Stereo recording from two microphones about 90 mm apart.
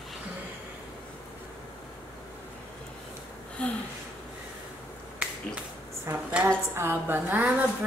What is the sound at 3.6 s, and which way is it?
Gasp, 10° left (ahead or behind).